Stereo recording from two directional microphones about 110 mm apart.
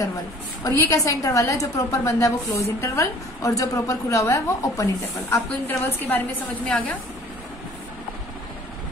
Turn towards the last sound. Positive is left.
turn(degrees=10)  # may be behind; listen again after turning